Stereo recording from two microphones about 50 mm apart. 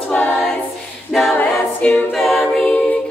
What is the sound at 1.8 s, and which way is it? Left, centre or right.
A capella, left.